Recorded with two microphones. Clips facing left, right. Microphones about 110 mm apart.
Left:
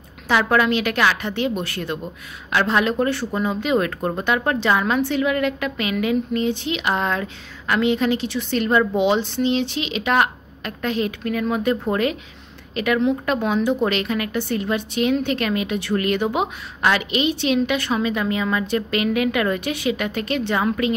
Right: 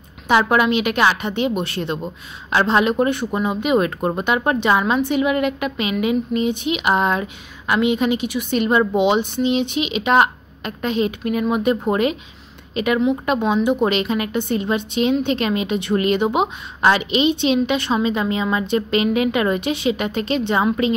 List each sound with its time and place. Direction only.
0.3 s a woman's voice: 20° right (ahead or behind)